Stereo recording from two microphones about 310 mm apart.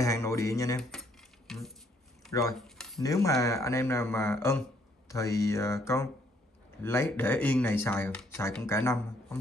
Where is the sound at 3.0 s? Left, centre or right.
Centre.